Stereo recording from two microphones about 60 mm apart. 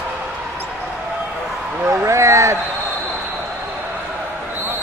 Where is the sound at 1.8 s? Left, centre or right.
Right.